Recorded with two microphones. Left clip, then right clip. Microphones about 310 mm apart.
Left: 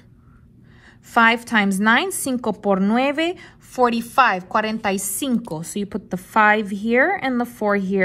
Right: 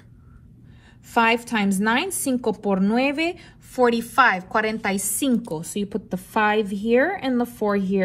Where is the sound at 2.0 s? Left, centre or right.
Left.